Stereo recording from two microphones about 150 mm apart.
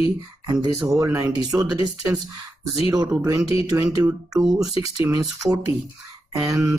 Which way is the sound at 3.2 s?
20° right (ahead or behind).